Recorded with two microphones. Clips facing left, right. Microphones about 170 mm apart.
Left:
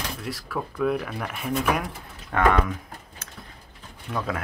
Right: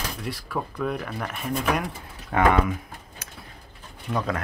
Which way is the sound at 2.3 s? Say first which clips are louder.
Right 1 dB; 10° right (ahead or behind).